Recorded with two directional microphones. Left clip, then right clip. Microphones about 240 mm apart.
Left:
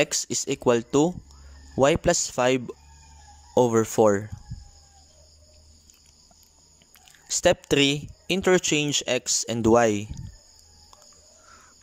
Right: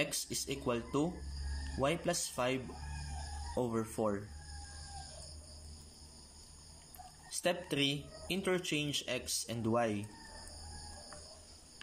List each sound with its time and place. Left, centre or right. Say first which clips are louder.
0.0 s speech: left 12 dB; left
7.2 s speech: left 14 dB; left